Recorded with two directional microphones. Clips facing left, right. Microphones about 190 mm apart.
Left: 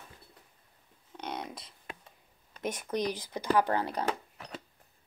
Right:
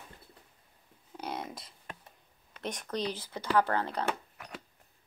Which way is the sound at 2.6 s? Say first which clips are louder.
Left 3 dB; 10° left (ahead or behind).